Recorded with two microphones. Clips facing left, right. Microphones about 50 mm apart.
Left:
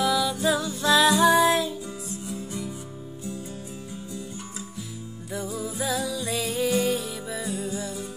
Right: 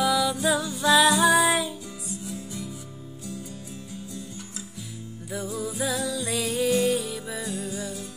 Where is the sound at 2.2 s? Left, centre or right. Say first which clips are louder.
Left 3 dB; left.